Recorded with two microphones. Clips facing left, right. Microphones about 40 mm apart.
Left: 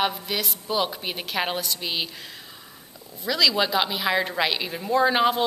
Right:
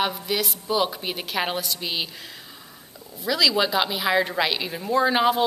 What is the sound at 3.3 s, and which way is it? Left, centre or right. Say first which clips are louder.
A woman's voice: right 1 dB; centre.